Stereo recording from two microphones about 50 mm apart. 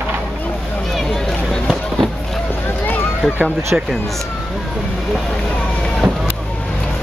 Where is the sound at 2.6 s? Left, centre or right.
Left.